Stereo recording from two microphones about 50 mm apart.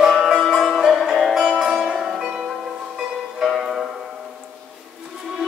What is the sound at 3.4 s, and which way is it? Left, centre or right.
Music, centre.